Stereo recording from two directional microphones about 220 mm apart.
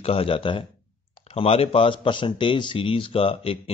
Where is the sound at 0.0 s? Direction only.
25° left (ahead or behind).